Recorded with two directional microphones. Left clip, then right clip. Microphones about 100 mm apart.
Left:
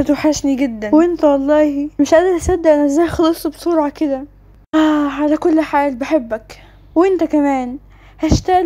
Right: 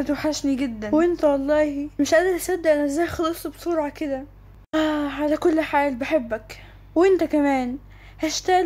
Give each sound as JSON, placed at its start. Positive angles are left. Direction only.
{"t": 0.0, "sound": "a woman's voice", "side_deg": 45}
{"t": 0.9, "sound": "a woman's voice", "side_deg": 25}
{"t": 4.6, "sound": "a woman's voice", "side_deg": 25}
{"t": 6.9, "sound": "speech", "side_deg": 15}